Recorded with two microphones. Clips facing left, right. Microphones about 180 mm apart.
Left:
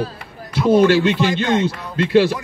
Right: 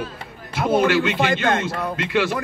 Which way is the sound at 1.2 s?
60° right (ahead or behind).